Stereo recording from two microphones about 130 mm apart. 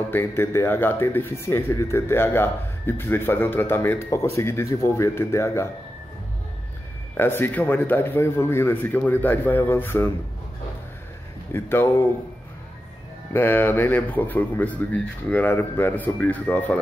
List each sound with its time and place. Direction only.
0.1 s speech: 20° left (ahead or behind)
7.2 s a man's voice: 15° left (ahead or behind)
11.5 s a man's voice: 15° left (ahead or behind)
13.3 s a man's voice: 15° left (ahead or behind)